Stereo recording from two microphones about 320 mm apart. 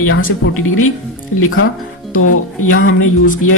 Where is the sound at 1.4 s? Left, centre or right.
Left.